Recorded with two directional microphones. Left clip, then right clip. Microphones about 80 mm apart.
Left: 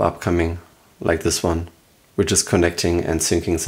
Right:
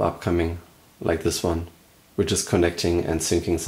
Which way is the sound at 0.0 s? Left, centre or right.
Left.